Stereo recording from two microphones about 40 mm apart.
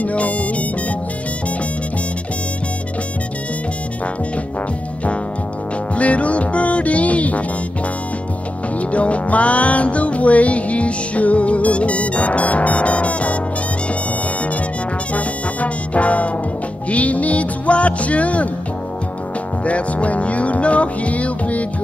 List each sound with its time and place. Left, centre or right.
0.0 s music: left
5.9 s music: left
8.7 s music: left
15.1 s music: left
19.6 s music: left